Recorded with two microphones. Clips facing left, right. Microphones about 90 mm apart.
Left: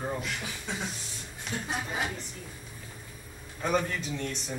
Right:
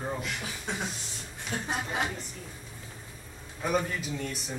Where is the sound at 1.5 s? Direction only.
65° right (ahead or behind).